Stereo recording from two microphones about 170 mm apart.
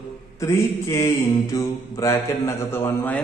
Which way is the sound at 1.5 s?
20° left (ahead or behind).